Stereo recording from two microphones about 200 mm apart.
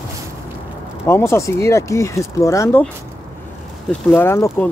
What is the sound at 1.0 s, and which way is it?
Speech, 15° left (ahead or behind).